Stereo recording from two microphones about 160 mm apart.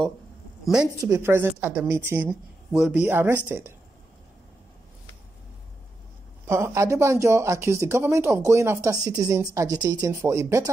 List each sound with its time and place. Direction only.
1.0 s speech: 15° right (ahead or behind)
6.4 s speech: 15° right (ahead or behind)